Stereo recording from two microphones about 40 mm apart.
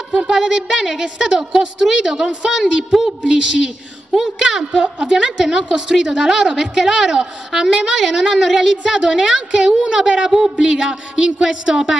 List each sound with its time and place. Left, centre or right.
0.1 s a woman's voice: centre
4.8 s a woman's voice: right
5.1 s a woman's voice: centre